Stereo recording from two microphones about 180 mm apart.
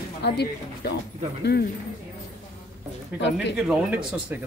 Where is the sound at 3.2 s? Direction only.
80° left.